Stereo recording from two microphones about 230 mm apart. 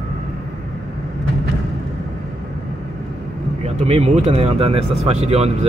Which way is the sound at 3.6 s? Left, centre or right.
Right.